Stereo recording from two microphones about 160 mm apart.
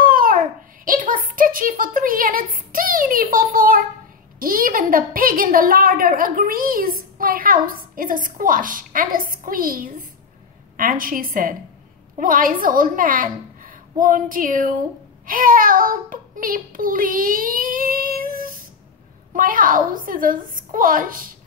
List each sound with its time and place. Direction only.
0.0 s babbling: 60° right (ahead or behind)
0.8 s a sound: 60° right (ahead or behind)
4.4 s a woman's voice: 60° right (ahead or behind)